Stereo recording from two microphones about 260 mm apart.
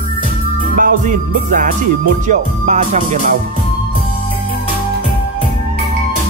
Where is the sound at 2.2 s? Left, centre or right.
Right.